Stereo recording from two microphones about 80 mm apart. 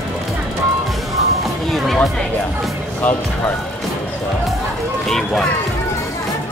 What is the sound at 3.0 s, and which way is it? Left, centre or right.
Speech, centre.